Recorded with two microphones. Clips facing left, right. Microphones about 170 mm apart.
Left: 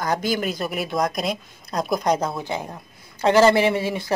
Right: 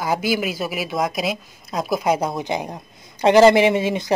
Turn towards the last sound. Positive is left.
turn(degrees=-20)  # may be behind; listen again after turning